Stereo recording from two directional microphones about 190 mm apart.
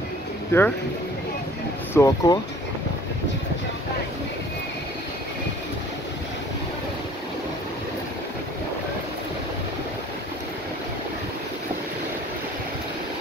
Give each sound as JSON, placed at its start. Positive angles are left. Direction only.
{"t": 0.5, "sound": "speech", "side_deg": 15}
{"t": 2.0, "sound": "speech", "side_deg": 15}